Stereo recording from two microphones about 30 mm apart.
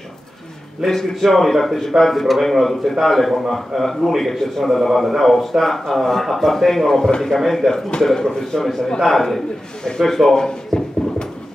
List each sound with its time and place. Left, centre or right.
0.8 s a man's voice: centre
9.0 s a man's voice: centre
10.7 s a sound: centre